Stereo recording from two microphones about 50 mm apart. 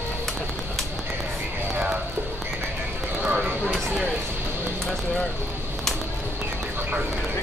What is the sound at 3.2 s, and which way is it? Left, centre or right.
Speech, right.